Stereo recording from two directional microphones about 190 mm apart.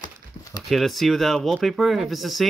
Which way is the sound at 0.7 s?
Centre (ahead or behind).